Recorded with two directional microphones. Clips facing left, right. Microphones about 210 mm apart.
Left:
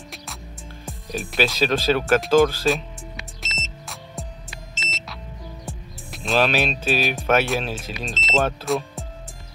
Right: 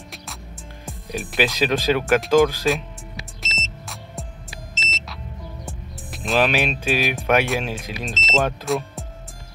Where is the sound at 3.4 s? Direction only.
Centre (ahead or behind).